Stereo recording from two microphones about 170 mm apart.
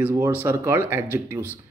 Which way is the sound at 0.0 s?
15° right (ahead or behind).